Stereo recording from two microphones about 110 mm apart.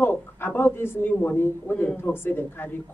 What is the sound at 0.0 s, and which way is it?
A woman's voice, 20° left (ahead or behind).